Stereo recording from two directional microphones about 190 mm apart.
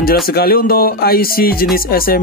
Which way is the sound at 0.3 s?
55° left (ahead or behind).